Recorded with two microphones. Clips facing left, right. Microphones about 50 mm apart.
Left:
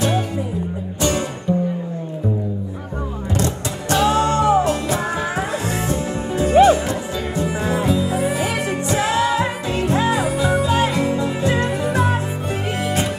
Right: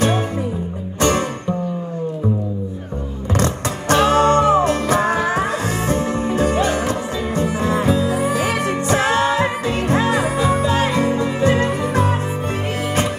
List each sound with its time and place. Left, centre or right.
3.3 s music: right